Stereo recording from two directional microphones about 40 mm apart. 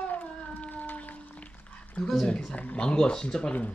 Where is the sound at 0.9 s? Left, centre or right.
Left.